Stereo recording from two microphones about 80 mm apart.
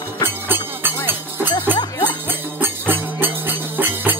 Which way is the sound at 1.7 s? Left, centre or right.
Left.